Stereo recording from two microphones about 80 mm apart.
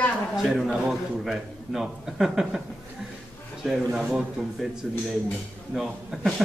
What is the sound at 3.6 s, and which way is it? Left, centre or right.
A man's voice, centre.